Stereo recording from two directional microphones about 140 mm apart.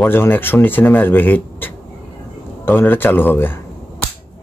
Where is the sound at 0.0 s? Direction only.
15° left (ahead or behind).